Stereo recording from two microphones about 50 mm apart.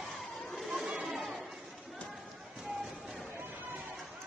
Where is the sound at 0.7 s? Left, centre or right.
Centre.